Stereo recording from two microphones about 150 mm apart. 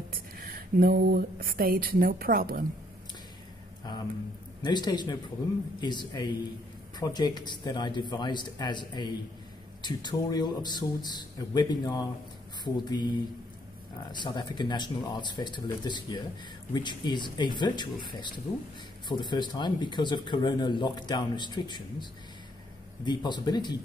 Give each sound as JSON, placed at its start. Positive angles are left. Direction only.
{"t": 0.1, "sound": "a sound", "side_deg": -80}
{"t": 4.6, "sound": "speech", "side_deg": 30}
{"t": 14.2, "sound": "speech", "side_deg": 30}
{"t": 23.0, "sound": "speech", "side_deg": 30}